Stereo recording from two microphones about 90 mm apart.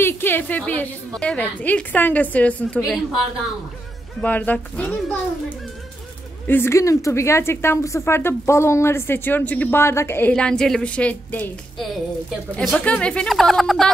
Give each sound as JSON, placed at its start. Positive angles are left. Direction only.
{"t": 0.0, "sound": "a woman's voice", "side_deg": 25}
{"t": 4.2, "sound": "a woman's voice", "side_deg": 20}
{"t": 6.4, "sound": "a woman's voice", "side_deg": 25}
{"t": 10.3, "sound": "a woman's voice", "side_deg": 10}
{"t": 12.5, "sound": "a woman's voice", "side_deg": 15}
{"t": 13.3, "sound": "speech", "side_deg": 0}